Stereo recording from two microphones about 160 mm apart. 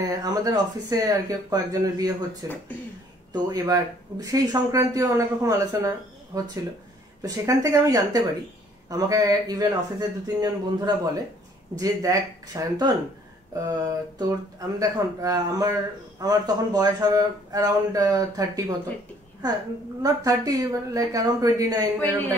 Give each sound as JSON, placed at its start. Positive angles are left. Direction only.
{"t": 0.0, "sound": "speech", "side_deg": -25}
{"t": 20.0, "sound": "speech", "side_deg": -25}